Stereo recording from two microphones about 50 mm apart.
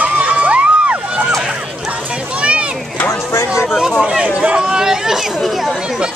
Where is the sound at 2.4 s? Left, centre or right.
Right.